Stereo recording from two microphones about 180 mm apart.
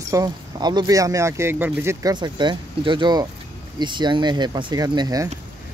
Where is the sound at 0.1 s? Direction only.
25° right (ahead or behind).